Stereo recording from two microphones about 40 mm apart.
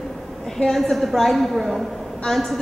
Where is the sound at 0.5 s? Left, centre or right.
Centre.